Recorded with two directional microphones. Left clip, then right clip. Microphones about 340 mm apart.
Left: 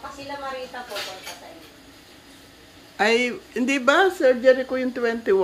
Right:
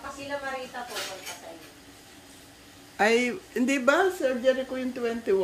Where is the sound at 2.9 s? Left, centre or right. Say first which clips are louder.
Left 3 dB; centre.